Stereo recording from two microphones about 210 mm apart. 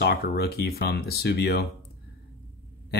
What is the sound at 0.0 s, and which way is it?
Speech, 45° left (ahead or behind).